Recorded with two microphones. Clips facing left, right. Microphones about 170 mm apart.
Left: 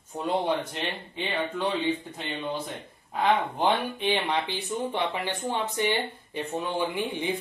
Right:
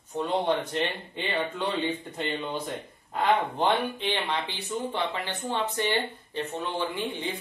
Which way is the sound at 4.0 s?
15° left (ahead or behind).